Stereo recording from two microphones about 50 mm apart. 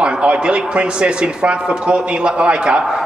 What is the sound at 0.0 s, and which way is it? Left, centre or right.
Speech, right.